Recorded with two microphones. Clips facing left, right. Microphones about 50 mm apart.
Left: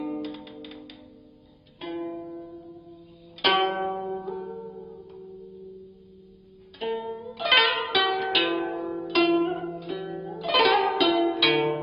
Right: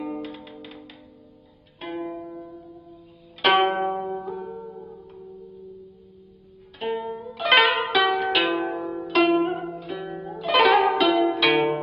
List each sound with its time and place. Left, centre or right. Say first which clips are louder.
0.0 s music: even; centre
1.8 s pizzicato: right 1 dB; centre
2.1 s zither: right 1 dB; centre
4.2 s music: right 1 dB; centre
6.8 s zither: right 2 dB; centre
7.3 s zither: right 3 dB; centre
9.7 s zither: right 1 dB; centre
11.0 s music: right 2 dB; centre